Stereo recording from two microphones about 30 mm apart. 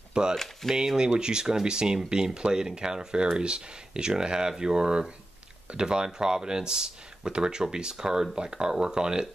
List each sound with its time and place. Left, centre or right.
0.2 s speech: right